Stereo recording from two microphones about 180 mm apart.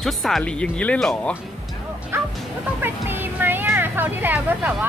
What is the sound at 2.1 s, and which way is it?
Bow-wow, 15° right (ahead or behind).